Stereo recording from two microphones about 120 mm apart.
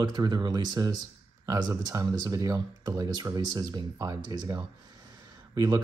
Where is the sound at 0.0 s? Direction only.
35° right (ahead or behind).